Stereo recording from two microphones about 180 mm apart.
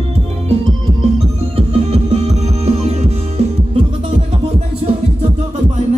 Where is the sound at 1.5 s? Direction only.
35° right (ahead or behind).